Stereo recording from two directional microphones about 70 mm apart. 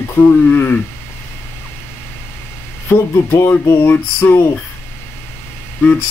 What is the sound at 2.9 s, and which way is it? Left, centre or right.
Speech, left.